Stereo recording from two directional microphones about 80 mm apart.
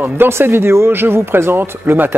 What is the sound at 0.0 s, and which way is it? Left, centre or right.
Speech, right.